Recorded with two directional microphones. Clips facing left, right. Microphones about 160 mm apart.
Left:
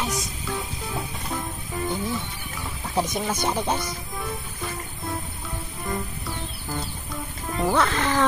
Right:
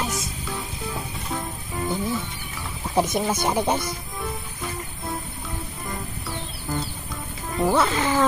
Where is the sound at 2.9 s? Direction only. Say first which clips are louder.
Right 3 dB; 10° right (ahead or behind).